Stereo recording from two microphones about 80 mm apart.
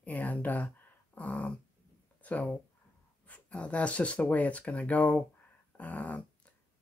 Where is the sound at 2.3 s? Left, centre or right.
Centre.